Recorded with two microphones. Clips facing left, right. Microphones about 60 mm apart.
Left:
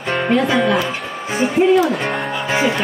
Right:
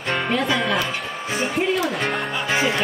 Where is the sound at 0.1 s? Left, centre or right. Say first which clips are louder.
Left 5 dB; centre.